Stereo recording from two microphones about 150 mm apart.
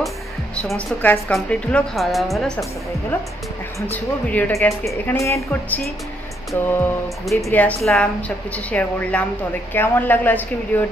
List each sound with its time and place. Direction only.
0.6 s a woman's voice: 10° left (ahead or behind)
3.8 s a woman's voice: 10° left (ahead or behind)